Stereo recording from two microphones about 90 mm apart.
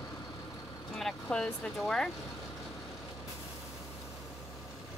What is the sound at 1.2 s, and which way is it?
Speech, 10° left (ahead or behind).